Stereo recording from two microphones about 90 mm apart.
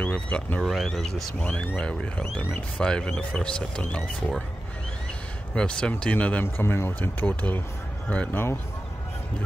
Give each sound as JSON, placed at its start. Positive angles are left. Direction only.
{"t": 0.0, "sound": "speech", "side_deg": 15}
{"t": 0.6, "sound": "speech", "side_deg": 0}
{"t": 1.4, "sound": "speech", "side_deg": 15}
{"t": 5.5, "sound": "speech", "side_deg": 10}
{"t": 6.4, "sound": "speech", "side_deg": 25}